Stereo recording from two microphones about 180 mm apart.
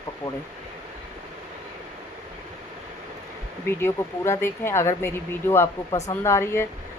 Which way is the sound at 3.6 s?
15° left (ahead or behind).